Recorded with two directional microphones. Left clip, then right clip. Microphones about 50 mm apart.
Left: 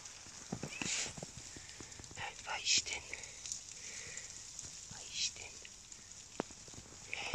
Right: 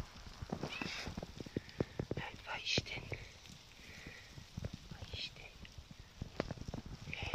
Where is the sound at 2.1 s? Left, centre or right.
Left.